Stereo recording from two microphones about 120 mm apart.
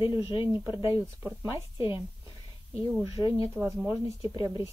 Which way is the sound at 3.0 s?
50° left (ahead or behind).